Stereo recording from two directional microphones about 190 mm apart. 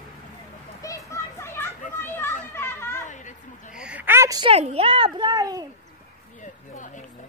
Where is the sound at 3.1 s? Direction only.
40° left (ahead or behind).